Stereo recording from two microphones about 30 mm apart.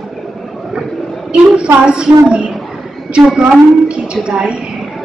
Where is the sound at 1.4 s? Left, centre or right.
Right.